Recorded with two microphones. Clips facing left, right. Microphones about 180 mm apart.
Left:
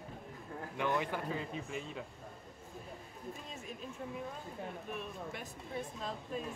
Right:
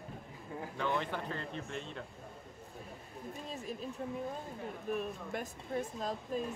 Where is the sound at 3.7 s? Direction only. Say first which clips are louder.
Right 4 dB; 35° right (ahead or behind).